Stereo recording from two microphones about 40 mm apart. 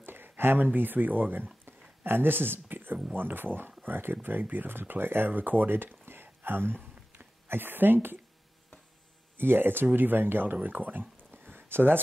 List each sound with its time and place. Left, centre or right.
0.0 s a sound: right
0.7 s speech: right
5.3 s speech: right
9.4 s speech: right